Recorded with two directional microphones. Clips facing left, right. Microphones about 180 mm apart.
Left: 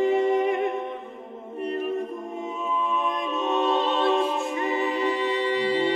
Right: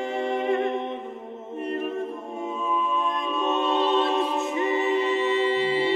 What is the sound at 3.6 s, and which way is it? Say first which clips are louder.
Music: left 2 dB; 20° left (ahead or behind).